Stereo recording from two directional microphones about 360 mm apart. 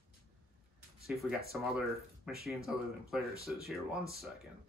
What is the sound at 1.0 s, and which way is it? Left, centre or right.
Speech, centre.